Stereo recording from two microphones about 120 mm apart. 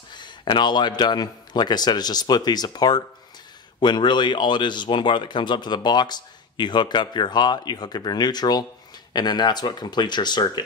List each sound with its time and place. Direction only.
0.1 s speech: 40° left (ahead or behind)